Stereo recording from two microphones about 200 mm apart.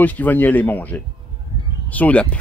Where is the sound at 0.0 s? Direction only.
10° left (ahead or behind).